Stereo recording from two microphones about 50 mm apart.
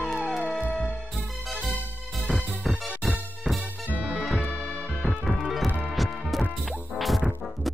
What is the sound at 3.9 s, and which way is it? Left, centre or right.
Music, right.